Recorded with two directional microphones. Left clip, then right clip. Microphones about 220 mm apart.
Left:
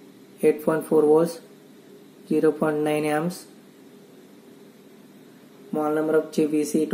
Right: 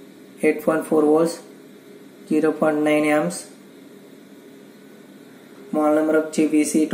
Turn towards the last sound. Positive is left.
turn(degrees=15)  # may be behind; listen again after turning